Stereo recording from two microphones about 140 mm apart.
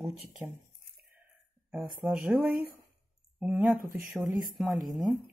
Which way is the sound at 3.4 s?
10° right (ahead or behind).